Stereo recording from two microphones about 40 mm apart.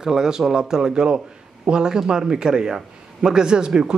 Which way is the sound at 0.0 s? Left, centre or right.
Centre.